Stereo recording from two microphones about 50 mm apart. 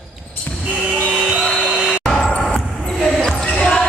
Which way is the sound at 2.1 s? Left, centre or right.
Centre.